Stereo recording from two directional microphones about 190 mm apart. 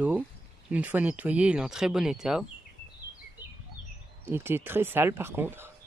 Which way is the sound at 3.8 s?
80° left.